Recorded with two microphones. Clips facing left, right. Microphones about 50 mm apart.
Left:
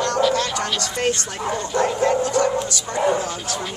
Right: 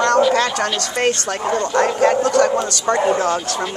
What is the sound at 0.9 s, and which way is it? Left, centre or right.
Speech, right.